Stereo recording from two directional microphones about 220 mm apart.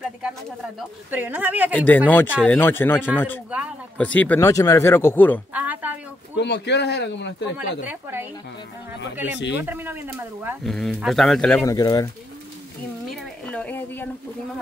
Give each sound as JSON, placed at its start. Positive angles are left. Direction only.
{"t": 0.2, "sound": "speech", "side_deg": 0}
{"t": 1.7, "sound": "speech", "side_deg": 10}
{"t": 3.5, "sound": "speech", "side_deg": -5}
{"t": 4.0, "sound": "speech", "side_deg": 5}
{"t": 5.5, "sound": "a sound", "side_deg": -5}
{"t": 6.3, "sound": "speech", "side_deg": 50}
{"t": 7.8, "sound": "speech", "side_deg": -10}
{"t": 9.4, "sound": "speech", "side_deg": 55}
{"t": 9.7, "sound": "speech", "side_deg": -10}
{"t": 10.6, "sound": "speech", "side_deg": 0}
{"t": 11.6, "sound": "speech", "side_deg": 15}
{"t": 13.1, "sound": "a sound", "side_deg": 5}